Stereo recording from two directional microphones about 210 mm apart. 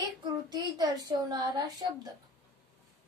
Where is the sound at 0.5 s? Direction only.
20° right (ahead or behind).